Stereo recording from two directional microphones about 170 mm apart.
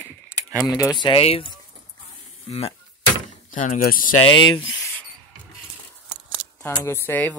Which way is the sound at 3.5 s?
50° left (ahead or behind).